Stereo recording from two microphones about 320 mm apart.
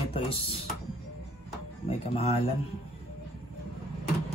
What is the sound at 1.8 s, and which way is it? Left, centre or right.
Speech, centre.